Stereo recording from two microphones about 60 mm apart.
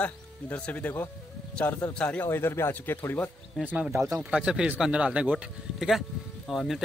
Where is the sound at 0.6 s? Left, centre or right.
Left.